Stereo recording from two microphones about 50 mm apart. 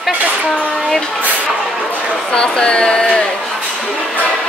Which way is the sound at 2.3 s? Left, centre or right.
Centre.